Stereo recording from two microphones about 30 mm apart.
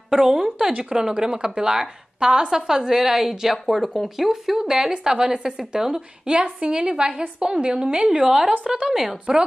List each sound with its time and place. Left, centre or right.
0.1 s a woman's voice: centre
8.8 s a woman's voice: centre